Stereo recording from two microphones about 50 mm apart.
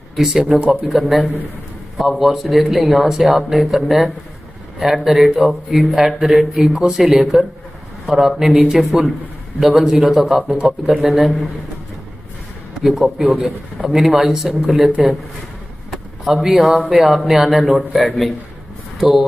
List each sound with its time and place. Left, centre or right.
0.1 s speech: centre
0.7 s speech: centre
12.8 s speech: centre
15.9 s a sound: centre
17.0 s speech: centre